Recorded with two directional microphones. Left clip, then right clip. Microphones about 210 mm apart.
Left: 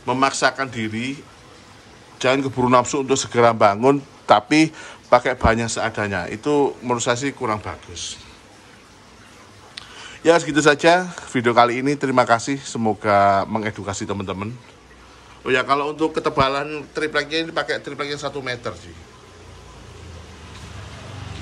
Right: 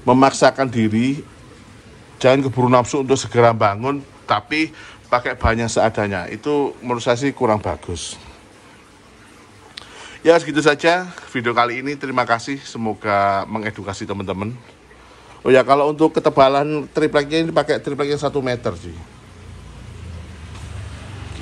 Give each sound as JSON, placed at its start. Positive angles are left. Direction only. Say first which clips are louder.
{"t": 0.0, "sound": "a man's voice", "louder": "right 5 dB", "side_deg": 5}
{"t": 2.1, "sound": "a man's voice", "louder": "right 4 dB", "side_deg": 15}
{"t": 9.9, "sound": "a man's voice", "louder": "right 2 dB", "side_deg": 15}